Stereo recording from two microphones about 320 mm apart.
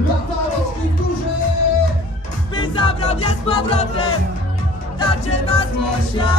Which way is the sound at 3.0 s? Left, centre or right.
Centre.